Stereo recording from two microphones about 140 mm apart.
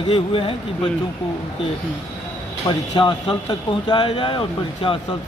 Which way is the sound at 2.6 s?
35° left (ahead or behind).